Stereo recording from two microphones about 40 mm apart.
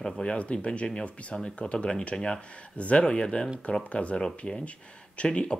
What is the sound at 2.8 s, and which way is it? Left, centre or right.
Speech, left.